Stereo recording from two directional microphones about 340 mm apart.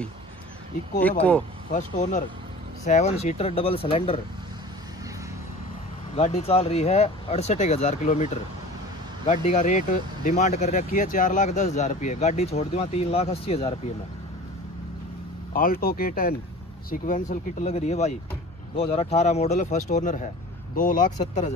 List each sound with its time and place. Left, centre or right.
1.7 s speech: left
6.1 s speech: centre
15.5 s speech: left